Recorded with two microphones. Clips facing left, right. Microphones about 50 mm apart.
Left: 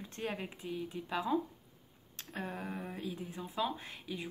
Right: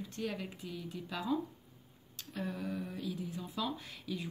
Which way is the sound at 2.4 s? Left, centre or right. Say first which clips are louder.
Right 2 dB; left.